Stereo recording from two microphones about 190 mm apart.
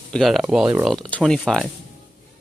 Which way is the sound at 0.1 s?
Centre (ahead or behind).